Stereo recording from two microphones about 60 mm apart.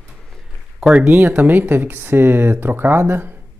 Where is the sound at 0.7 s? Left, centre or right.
Centre.